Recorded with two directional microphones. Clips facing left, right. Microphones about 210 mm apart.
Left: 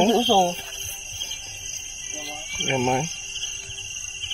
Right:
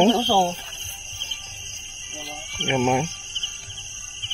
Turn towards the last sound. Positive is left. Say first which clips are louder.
# right 2 dB
turn(degrees=0)  # may be behind; listen again after turning